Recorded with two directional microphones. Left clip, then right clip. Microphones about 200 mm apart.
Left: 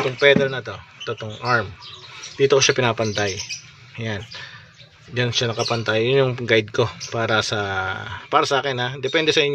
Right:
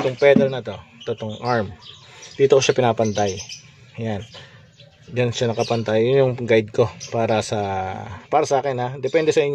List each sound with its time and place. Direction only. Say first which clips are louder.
0.2 s speech: right 1 dB; 15° right (ahead or behind)
5.1 s speech: right 1 dB; 10° right (ahead or behind)